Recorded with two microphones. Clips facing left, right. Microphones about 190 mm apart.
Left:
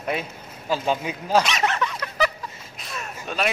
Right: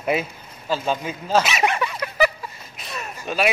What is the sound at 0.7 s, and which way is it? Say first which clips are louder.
Speech: even; 15° left (ahead or behind).